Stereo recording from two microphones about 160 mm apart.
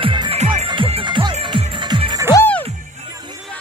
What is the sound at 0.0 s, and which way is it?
Music, 30° right (ahead or behind).